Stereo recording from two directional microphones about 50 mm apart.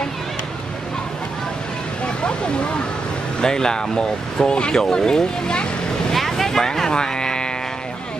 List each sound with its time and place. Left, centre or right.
2.2 s a sound: centre
3.3 s speech: centre
6.1 s vehicle: centre